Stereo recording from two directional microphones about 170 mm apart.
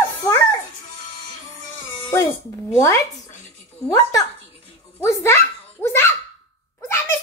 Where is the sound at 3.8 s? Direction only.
20° left (ahead or behind).